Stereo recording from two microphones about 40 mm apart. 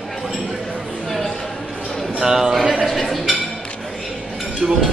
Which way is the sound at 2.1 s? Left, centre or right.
Centre.